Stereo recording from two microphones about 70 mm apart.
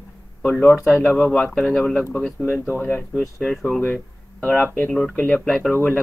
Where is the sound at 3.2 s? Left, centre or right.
Centre.